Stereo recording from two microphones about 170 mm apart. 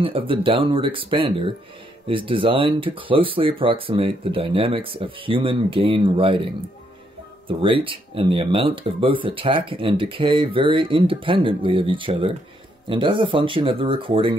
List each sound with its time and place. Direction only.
0.0 s speech: 30° right (ahead or behind)